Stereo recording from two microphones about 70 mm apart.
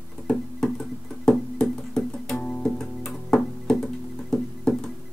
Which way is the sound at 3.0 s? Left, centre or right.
Centre.